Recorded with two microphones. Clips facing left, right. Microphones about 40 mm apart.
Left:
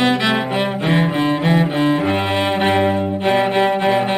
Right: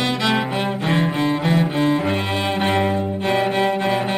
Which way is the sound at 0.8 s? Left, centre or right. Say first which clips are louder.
Left 2 dB; centre.